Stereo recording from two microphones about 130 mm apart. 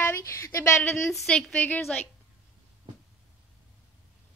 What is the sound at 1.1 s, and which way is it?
Speech, 5° left (ahead or behind).